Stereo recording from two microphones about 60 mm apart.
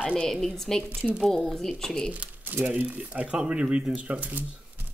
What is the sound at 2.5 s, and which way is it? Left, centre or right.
Speech, right.